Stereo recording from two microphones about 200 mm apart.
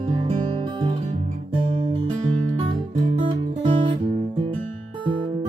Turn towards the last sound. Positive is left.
turn(degrees=-25)  # may be behind; listen again after turning